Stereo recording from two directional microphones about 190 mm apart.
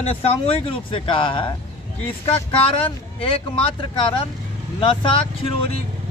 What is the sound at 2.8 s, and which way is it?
A man's voice, 30° left (ahead or behind).